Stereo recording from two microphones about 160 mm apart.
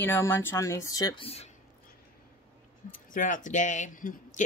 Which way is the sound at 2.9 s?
55° left (ahead or behind).